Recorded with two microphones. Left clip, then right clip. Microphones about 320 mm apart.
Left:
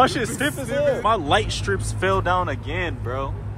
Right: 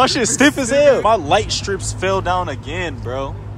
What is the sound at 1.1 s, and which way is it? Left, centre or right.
Speech, centre.